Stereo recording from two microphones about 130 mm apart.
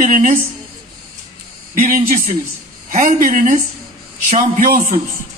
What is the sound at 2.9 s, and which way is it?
A man's voice, 80° right.